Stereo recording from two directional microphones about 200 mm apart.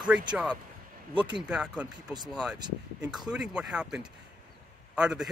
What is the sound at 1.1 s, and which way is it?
Speech, 25° right (ahead or behind).